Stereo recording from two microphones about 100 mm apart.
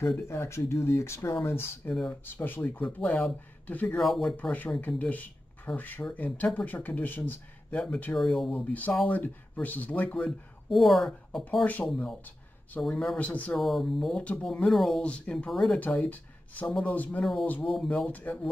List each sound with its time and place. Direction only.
0.3 s speech: 25° left (ahead or behind)
4.0 s speech: centre (ahead or behind)
4.4 s speech: 15° left (ahead or behind)
7.8 s speech: 10° left (ahead or behind)
8.6 s speech: 15° left (ahead or behind)
10.7 s speech: centre (ahead or behind)
11.6 s speech: 15° left (ahead or behind)
11.9 s speech: 5° left (ahead or behind)
13.6 s speech: centre (ahead or behind)
14.2 s speech: 15° left (ahead or behind)
17.2 s speech: 5° left (ahead or behind)
17.5 s speech: 15° left (ahead or behind)